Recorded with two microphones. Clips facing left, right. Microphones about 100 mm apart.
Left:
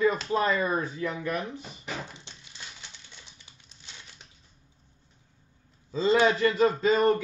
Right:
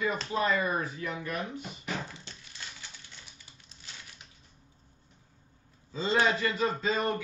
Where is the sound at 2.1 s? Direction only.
20° left (ahead or behind).